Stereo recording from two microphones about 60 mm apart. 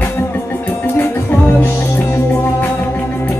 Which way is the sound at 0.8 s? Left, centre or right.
Left.